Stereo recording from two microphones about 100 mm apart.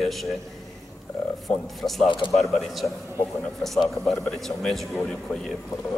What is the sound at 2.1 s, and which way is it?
Speech, 55° left (ahead or behind).